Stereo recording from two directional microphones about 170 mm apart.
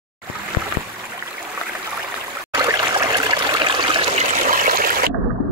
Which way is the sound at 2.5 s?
20° right (ahead or behind).